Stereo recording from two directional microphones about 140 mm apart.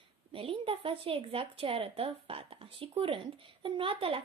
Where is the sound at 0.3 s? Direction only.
40° right (ahead or behind).